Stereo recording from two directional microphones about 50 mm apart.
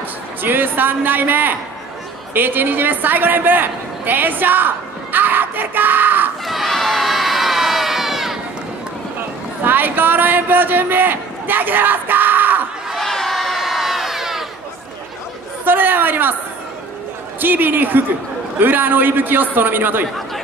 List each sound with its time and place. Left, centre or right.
0.4 s a man's voice: right
6.4 s crowd: centre
9.7 s speech: right
12.9 s crowd: centre
15.6 s a man's voice: right
17.4 s a man's voice: right